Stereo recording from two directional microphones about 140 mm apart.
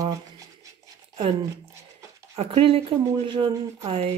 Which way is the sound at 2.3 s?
45° right (ahead or behind).